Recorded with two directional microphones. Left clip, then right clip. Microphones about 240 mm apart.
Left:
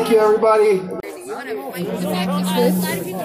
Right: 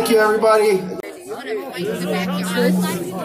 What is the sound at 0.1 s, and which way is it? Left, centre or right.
Speech, right.